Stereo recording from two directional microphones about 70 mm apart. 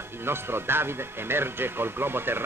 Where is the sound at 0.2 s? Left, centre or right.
Right.